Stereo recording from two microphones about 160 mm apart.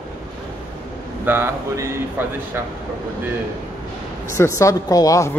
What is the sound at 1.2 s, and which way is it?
Speech, 15° right (ahead or behind).